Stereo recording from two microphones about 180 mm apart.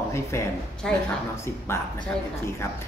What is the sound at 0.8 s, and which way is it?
Speech, 5° left (ahead or behind).